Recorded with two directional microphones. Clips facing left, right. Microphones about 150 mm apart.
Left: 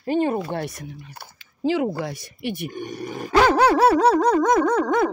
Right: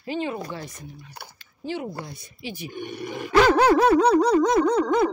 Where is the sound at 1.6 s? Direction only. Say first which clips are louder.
Left 9 dB; 90° left; by 2.7 s 60° left (ahead or behind).